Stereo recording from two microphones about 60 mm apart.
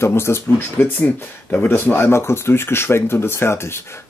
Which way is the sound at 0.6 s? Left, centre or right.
Left.